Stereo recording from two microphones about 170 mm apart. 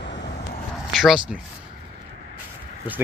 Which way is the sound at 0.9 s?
Centre (ahead or behind).